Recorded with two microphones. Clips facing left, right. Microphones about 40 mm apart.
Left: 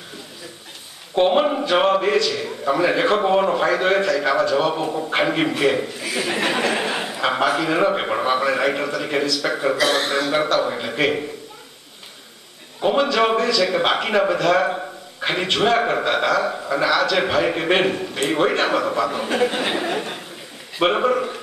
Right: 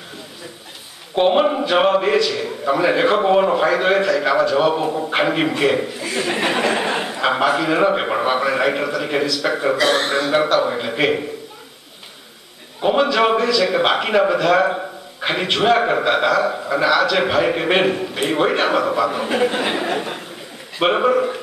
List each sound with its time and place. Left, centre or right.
1.1 s a man's voice: centre
12.8 s a man's voice: centre